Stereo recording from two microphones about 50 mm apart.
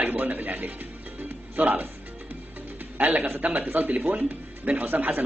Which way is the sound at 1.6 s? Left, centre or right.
Right.